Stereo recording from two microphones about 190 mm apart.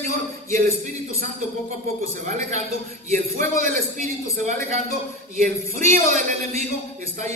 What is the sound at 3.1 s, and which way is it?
Speech, 45° right (ahead or behind).